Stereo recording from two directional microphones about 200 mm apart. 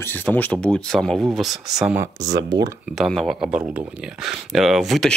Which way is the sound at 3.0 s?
Centre (ahead or behind).